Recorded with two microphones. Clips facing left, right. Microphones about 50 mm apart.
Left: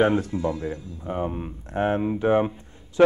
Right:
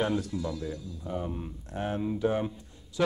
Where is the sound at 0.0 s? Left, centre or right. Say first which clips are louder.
Left 8 dB; left.